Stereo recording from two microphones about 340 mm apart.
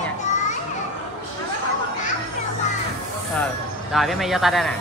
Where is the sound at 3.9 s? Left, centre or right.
Centre.